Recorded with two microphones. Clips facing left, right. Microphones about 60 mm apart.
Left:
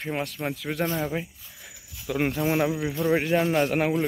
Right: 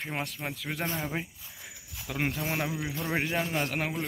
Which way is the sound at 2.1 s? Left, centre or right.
Centre.